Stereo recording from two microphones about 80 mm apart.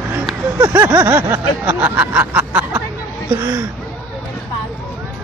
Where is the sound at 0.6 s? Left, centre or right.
Right.